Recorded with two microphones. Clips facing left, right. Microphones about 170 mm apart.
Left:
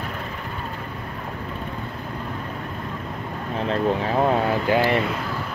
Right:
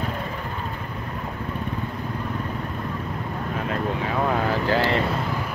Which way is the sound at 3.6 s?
25° left (ahead or behind).